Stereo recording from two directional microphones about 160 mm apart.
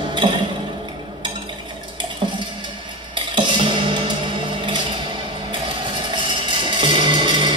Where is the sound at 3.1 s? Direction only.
30° right (ahead or behind).